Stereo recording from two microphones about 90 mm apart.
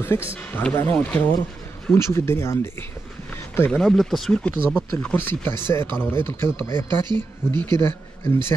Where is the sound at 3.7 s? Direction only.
5° left (ahead or behind).